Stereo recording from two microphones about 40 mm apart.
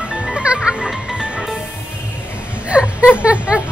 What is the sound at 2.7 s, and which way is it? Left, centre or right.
Vehicle, right.